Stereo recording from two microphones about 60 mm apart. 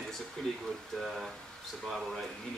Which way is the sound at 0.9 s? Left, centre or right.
Centre.